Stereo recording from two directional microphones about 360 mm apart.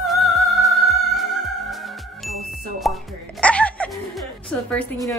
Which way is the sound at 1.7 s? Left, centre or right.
Centre.